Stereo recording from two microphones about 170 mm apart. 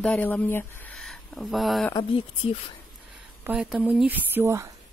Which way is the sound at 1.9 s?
30° left (ahead or behind).